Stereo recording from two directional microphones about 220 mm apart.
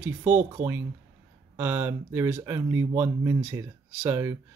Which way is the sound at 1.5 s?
10° right (ahead or behind).